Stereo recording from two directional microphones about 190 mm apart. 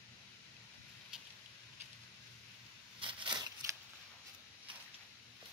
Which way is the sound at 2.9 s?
25° right (ahead or behind).